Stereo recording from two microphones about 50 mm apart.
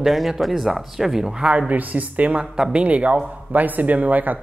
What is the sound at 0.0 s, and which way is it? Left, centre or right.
Speech, centre.